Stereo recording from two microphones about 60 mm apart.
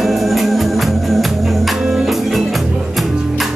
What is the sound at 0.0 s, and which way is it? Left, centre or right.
Music, centre.